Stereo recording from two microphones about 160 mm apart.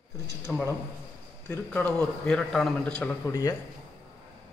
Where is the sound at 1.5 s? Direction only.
10° left (ahead or behind).